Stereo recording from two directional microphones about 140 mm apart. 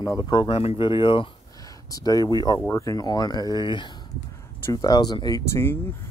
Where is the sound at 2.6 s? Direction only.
20° left (ahead or behind).